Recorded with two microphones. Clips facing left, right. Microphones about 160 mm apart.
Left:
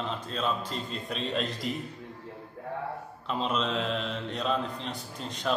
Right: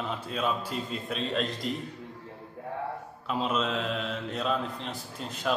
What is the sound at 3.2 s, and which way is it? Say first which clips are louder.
A man's voice: right 1 dB; 5° right (ahead or behind).